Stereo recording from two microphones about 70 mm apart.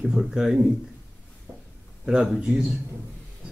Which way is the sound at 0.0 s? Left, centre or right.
Centre.